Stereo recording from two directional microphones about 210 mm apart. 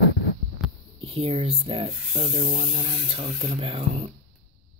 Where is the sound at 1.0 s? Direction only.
30° right (ahead or behind).